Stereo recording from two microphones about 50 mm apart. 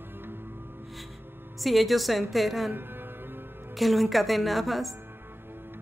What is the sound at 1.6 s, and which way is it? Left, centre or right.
Speech, centre.